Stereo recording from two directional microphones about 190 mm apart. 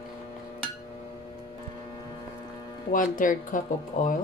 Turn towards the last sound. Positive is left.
turn(degrees=45)  # may be behind; listen again after turning